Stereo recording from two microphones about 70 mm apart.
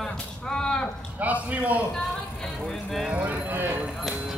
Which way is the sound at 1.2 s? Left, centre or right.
Right.